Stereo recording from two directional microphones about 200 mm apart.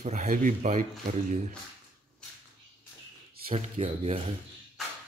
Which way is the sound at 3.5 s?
30° right (ahead or behind).